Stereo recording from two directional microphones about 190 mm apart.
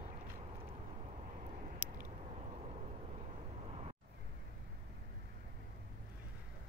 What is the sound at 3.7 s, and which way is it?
Vehicle, 30° right (ahead or behind).